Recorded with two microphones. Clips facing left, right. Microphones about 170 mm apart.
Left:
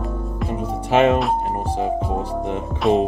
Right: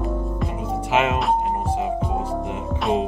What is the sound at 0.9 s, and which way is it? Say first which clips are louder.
Speech: left 6 dB; 35° left (ahead or behind).